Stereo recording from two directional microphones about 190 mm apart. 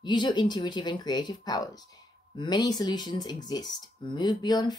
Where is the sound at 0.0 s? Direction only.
25° left (ahead or behind).